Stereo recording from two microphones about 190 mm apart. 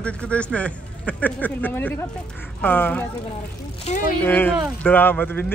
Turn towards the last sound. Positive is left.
turn(degrees=10)  # may be behind; listen again after turning